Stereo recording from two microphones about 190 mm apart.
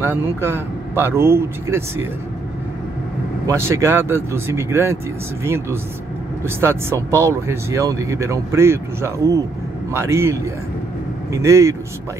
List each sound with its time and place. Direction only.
0.0 s speech: 10° right (ahead or behind)
3.4 s speech: 15° right (ahead or behind)